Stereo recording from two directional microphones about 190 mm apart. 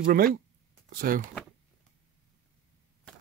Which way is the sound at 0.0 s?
50° right (ahead or behind).